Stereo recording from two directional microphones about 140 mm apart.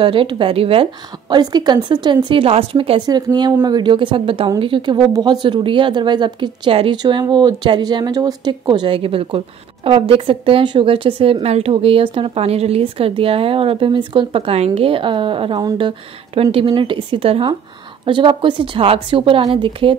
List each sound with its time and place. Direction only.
0.0 s a woman's voice: 35° right (ahead or behind)
1.3 s a woman's voice: 30° right (ahead or behind)
3.1 s a woman's voice: 30° right (ahead or behind)